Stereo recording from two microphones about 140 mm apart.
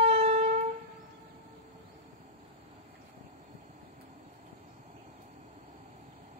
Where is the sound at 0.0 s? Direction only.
50° right (ahead or behind).